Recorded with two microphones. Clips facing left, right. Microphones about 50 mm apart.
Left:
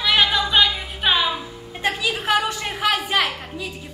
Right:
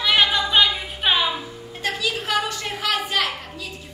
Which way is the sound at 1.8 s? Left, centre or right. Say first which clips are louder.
Left 2 dB; centre.